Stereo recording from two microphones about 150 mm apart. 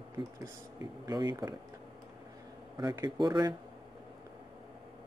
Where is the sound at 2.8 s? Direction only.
25° right (ahead or behind).